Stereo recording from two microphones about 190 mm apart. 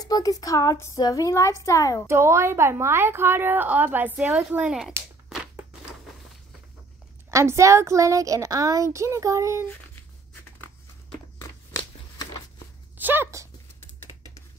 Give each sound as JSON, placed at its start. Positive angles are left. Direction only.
{"t": 0.0, "sound": "speech", "side_deg": 20}
{"t": 2.0, "sound": "a woman's voice", "side_deg": -15}
{"t": 5.3, "sound": "a sound", "side_deg": -5}
{"t": 7.2, "sound": "a woman's voice", "side_deg": -15}
{"t": 11.3, "sound": "a sound", "side_deg": 15}
{"t": 12.9, "sound": "speech", "side_deg": -10}